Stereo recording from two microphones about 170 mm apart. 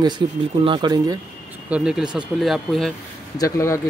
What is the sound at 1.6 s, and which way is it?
Speech, 5° right (ahead or behind).